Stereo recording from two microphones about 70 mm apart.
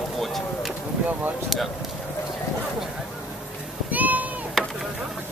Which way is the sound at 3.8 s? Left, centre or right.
Right.